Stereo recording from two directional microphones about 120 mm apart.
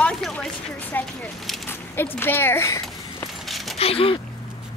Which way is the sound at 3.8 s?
50° left (ahead or behind).